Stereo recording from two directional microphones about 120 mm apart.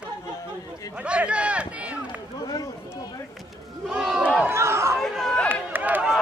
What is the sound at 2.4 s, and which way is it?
Run, 30° left (ahead or behind).